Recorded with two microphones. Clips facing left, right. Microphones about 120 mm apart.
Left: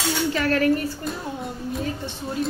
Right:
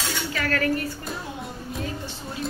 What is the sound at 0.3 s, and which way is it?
Cutlery, 30° left (ahead or behind).